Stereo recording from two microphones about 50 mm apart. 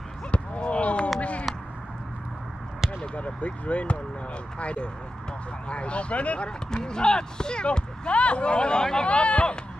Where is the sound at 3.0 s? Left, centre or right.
Left.